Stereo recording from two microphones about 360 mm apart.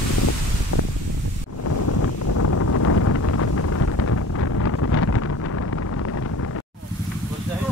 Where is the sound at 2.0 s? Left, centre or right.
Left.